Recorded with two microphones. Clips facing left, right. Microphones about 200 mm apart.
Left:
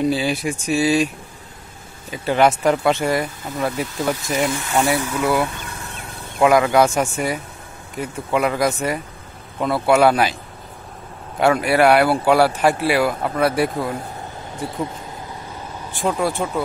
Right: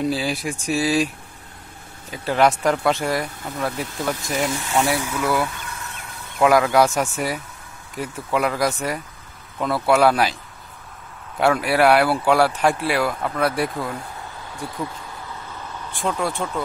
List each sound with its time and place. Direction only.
0.0 s speech: centre (ahead or behind)
6.4 s speech: centre (ahead or behind)
11.3 s speech: centre (ahead or behind)
13.7 s speech: 25° left (ahead or behind)
16.1 s speech: 5° left (ahead or behind)